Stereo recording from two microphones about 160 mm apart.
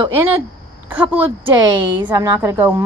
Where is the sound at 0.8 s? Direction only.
10° right (ahead or behind).